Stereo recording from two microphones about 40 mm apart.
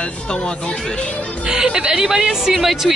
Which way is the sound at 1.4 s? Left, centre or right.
Right.